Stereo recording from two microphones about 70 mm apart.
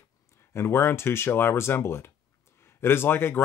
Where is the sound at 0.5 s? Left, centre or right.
Left.